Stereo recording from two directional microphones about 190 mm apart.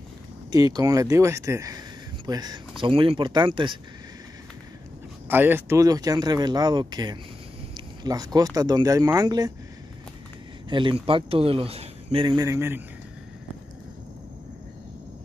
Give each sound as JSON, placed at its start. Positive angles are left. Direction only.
{"t": 0.7, "sound": "speech", "side_deg": -20}
{"t": 5.3, "sound": "speech", "side_deg": -10}
{"t": 10.7, "sound": "speech", "side_deg": -25}